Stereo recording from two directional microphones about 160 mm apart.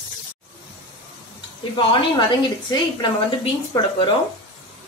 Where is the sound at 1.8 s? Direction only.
30° left (ahead or behind).